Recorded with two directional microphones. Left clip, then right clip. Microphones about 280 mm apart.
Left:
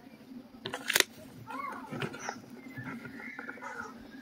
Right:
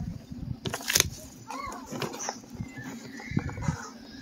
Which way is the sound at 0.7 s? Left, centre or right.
Right.